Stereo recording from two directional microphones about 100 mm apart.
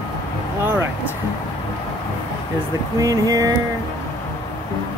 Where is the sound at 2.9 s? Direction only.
35° right (ahead or behind).